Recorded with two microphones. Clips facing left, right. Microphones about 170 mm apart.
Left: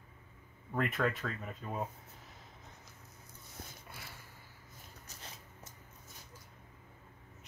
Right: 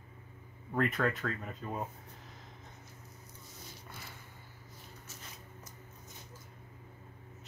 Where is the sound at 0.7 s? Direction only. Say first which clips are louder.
Right 2 dB; centre (ahead or behind).